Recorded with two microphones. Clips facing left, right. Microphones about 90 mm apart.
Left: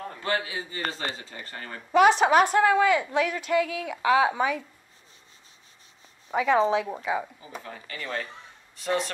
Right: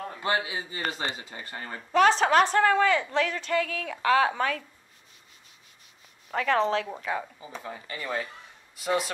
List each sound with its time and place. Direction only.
0.2 s a man's voice: 15° right (ahead or behind)
1.8 s a woman's voice: 10° left (ahead or behind)
6.3 s a woman's voice: 10° left (ahead or behind)
7.8 s speech: 20° right (ahead or behind)
8.7 s a man's voice: 5° right (ahead or behind)